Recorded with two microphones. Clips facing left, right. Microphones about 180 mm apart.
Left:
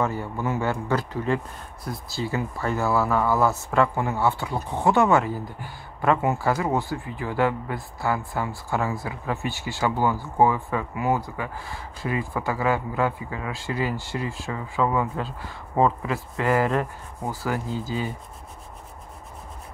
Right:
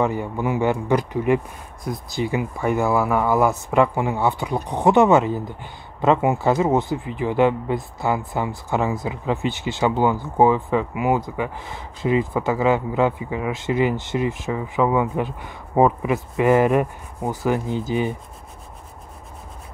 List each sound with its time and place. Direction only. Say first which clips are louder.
0.0 s speech: right 4 dB; 15° right (ahead or behind)